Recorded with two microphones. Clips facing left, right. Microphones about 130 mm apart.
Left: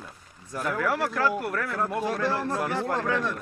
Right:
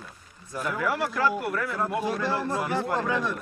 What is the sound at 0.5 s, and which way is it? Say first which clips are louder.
Speech: left 1 dB; 5° right (ahead or behind).